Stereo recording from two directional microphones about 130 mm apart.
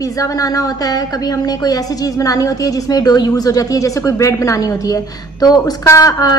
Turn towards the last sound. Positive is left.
turn(degrees=30)  # may be behind; listen again after turning